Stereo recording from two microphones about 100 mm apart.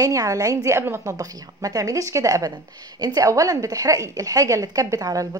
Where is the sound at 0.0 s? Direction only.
35° right (ahead or behind).